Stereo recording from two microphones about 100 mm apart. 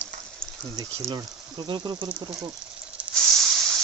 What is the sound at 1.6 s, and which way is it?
Speech, 50° right (ahead or behind).